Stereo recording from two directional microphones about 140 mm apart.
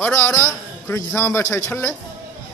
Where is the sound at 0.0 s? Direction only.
15° left (ahead or behind).